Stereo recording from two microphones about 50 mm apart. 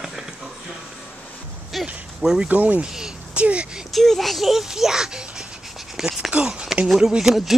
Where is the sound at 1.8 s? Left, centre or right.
Centre.